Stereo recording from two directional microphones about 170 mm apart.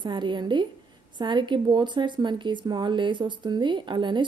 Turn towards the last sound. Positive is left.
turn(degrees=-25)  # may be behind; listen again after turning